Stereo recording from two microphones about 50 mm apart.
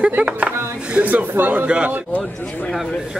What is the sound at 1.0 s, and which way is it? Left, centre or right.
Speech, right.